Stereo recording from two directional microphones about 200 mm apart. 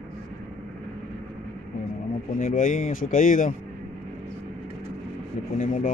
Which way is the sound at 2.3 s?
40° left (ahead or behind).